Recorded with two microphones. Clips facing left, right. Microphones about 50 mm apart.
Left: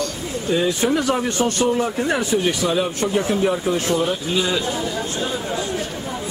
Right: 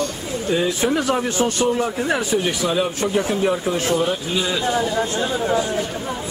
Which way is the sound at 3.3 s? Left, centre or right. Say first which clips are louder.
Left 1 dB; centre.